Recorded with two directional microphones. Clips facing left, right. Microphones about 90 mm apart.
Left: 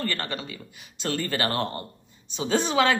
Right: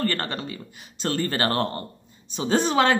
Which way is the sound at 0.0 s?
35° right (ahead or behind).